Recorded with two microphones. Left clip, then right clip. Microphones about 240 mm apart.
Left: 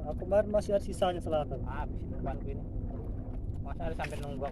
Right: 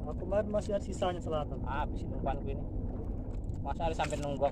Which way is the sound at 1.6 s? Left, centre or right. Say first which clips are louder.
Right 4 dB; right.